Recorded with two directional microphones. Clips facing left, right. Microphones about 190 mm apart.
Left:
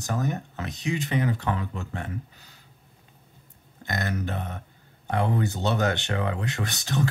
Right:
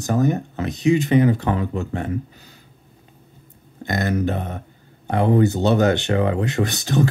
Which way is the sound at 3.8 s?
15° right (ahead or behind).